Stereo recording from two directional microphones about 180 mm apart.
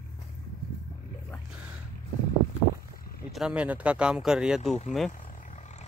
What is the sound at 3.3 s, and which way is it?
Speech, 5° right (ahead or behind).